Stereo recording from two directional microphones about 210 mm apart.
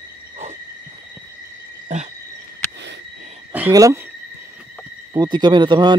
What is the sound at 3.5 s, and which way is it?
Speech, 10° right (ahead or behind).